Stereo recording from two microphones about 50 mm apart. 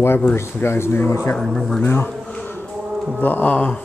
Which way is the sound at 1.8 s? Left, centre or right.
Left.